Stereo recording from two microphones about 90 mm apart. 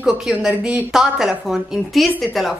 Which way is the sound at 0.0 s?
10° right (ahead or behind).